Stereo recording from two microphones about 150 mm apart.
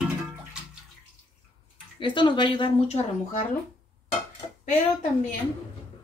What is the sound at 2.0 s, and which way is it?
Speech, 35° left (ahead or behind).